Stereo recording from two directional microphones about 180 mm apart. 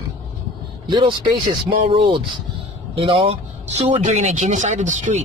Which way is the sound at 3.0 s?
30° right (ahead or behind).